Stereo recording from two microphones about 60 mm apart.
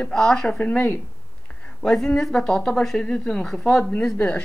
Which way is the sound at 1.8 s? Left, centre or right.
Centre.